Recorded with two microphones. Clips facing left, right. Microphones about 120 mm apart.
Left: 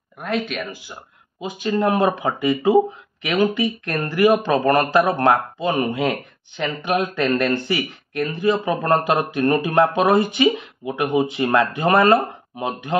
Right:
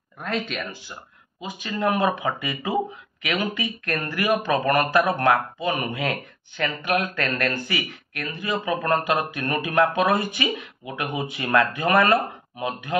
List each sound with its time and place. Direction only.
0.2 s speech: 10° left (ahead or behind)
1.4 s speech: 30° left (ahead or behind)